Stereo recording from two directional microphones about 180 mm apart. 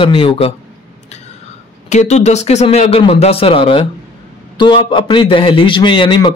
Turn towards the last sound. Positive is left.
turn(degrees=25)  # may be behind; listen again after turning